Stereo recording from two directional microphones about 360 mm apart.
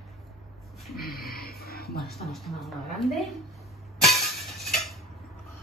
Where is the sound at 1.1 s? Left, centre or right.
Left.